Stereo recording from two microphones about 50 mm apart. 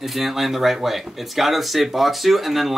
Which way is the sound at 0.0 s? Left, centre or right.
Centre.